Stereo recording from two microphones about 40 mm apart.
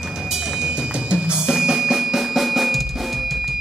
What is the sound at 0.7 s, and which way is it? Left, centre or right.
Drum, right.